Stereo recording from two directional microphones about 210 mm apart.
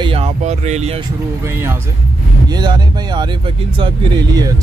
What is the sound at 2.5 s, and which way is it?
Speech, 20° right (ahead or behind).